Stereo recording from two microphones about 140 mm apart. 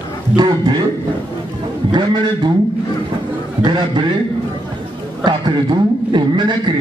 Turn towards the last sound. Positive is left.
turn(degrees=-35)  # may be behind; listen again after turning